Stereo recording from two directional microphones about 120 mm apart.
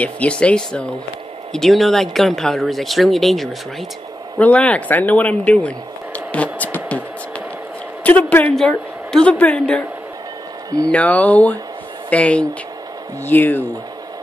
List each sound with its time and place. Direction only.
0.0 s a woman's voice: 10° left (ahead or behind)
8.0 s a woman's voice: 15° left (ahead or behind)
10.9 s a woman's voice: 10° left (ahead or behind)